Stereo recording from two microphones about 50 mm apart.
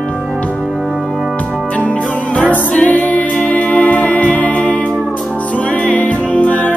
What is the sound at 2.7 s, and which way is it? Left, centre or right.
Music, left.